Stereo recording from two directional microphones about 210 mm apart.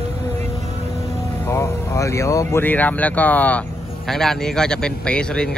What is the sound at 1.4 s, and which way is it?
Speech, 15° left (ahead or behind).